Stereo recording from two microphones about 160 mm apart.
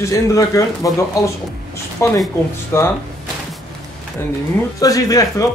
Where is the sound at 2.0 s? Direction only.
15° left (ahead or behind).